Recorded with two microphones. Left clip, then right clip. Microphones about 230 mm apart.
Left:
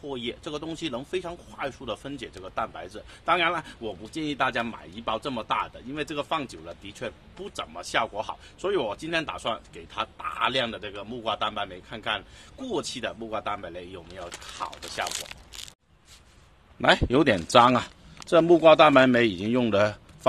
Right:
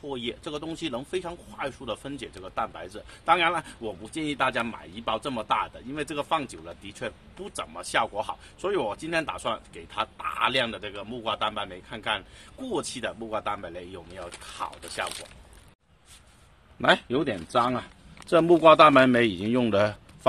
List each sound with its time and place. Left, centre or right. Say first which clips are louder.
0.0 s speech: even; centre
17.1 s speech: left 6 dB; left
18.3 s speech: even; centre